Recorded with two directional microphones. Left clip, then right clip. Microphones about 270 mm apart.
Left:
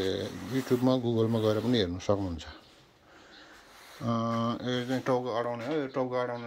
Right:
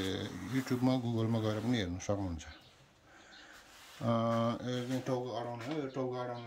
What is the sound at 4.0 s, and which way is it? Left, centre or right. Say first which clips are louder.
Speech: left 1 dB; centre.